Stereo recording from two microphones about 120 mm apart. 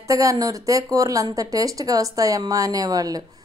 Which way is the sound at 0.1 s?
30° right (ahead or behind).